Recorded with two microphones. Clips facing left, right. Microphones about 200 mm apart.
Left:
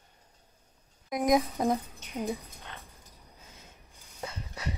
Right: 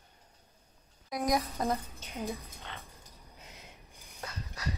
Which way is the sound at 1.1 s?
20° left (ahead or behind).